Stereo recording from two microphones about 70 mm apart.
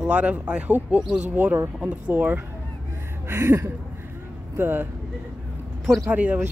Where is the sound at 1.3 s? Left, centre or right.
Right.